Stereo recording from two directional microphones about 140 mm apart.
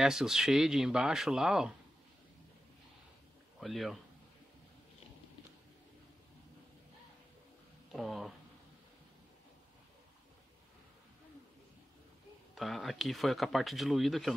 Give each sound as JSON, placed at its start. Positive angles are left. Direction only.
{"t": 0.0, "sound": "speech", "side_deg": -5}
{"t": 3.5, "sound": "speech", "side_deg": 0}
{"t": 7.9, "sound": "speech", "side_deg": 0}
{"t": 12.5, "sound": "speech", "side_deg": 0}